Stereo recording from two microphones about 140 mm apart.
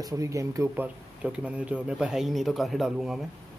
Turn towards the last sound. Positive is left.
turn(degrees=0)  # may be behind; listen again after turning